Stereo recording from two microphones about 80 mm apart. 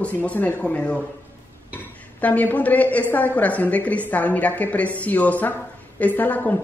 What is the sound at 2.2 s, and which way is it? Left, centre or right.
Speech, centre.